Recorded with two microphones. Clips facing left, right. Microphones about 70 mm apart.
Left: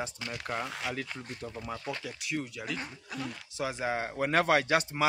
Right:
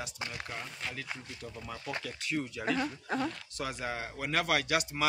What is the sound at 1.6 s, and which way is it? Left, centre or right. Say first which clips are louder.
Speech: left 3 dB; centre.